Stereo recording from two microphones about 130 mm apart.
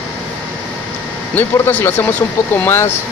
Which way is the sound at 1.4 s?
15° left (ahead or behind).